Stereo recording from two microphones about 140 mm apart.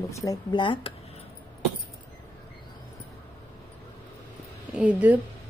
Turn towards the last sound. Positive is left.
turn(degrees=-10)  # may be behind; listen again after turning